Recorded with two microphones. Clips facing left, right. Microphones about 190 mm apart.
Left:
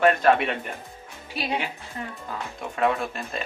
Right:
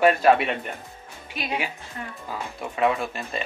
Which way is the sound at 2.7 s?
Centre (ahead or behind).